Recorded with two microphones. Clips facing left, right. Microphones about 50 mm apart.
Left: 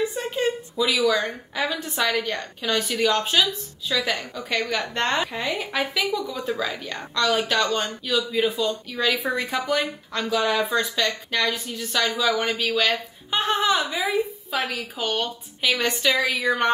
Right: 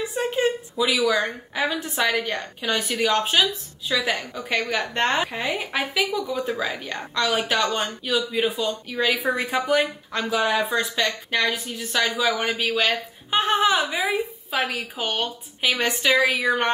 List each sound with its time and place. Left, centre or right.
0.3 s a woman's voice: centre
2.8 s speech: centre
4.5 s speech: centre
12.5 s speech: right